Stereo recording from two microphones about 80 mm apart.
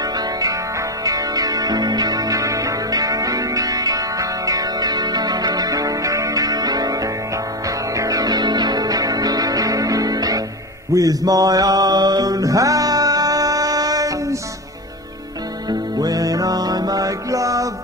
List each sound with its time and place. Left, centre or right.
0.0 s music: right
15.7 s music: right